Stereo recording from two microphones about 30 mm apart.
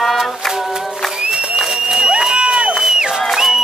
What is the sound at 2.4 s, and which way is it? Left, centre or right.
Crowd, right.